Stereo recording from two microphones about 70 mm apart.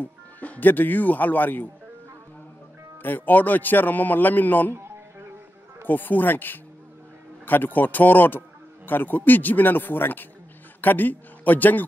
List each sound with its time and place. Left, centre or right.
0.0 s speech: left
3.0 s a man's voice: left
5.9 s a man's voice: left